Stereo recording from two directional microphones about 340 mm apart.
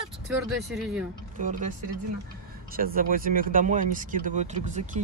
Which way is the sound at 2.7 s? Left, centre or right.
Right.